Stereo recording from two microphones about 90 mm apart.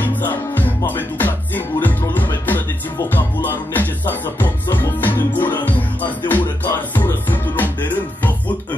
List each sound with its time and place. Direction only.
0.0 s music: 20° left (ahead or behind)